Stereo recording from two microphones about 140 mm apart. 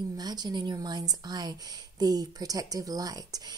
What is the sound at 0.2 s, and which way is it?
A woman's voice, 30° right (ahead or behind).